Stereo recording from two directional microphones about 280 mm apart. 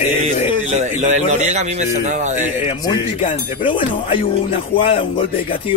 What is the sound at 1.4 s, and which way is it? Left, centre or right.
A man's voice, right.